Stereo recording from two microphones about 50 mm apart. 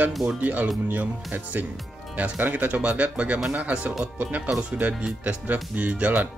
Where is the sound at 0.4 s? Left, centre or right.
Right.